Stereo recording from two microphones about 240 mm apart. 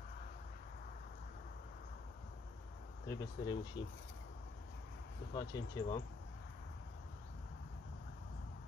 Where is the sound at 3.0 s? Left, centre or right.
Centre.